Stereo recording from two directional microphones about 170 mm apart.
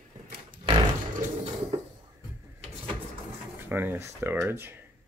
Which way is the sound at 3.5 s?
10° right (ahead or behind).